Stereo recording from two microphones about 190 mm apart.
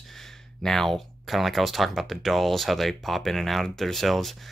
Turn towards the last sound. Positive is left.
turn(degrees=0)  # may be behind; listen again after turning